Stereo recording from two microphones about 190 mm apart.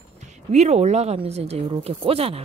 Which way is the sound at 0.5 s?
35° right (ahead or behind).